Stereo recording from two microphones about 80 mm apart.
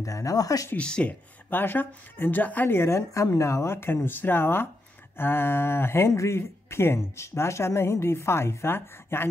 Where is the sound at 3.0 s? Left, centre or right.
Left.